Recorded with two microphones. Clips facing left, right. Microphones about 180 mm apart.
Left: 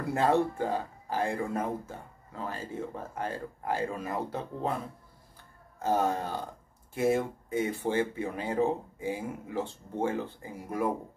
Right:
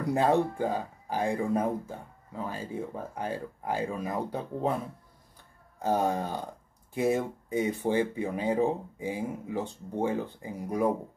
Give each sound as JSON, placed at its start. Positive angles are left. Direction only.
{"t": 0.1, "sound": "speech", "side_deg": -15}
{"t": 5.8, "sound": "speech", "side_deg": -15}